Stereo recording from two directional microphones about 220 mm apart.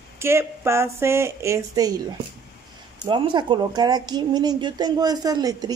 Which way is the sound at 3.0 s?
20° right (ahead or behind).